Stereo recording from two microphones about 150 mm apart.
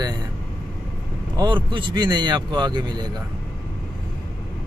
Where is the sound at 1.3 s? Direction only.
30° right (ahead or behind).